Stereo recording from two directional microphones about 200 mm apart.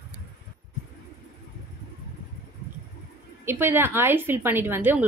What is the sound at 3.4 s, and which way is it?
A woman's voice, 10° right (ahead or behind).